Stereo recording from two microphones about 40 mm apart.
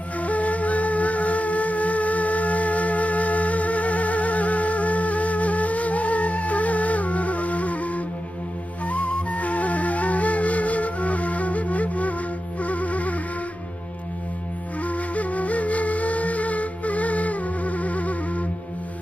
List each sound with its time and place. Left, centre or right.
0.2 s music: left
14.8 s flute: left